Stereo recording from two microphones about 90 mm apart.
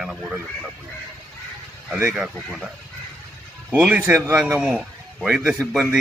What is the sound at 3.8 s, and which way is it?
Speech, 10° right (ahead or behind).